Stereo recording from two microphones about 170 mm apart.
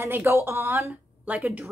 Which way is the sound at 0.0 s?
15° right (ahead or behind).